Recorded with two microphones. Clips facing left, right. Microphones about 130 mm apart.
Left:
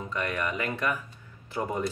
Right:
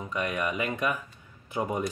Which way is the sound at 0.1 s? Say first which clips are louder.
Right 1 dB; 15° right (ahead or behind).